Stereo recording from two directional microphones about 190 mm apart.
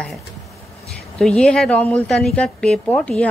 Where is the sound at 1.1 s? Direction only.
5° left (ahead or behind).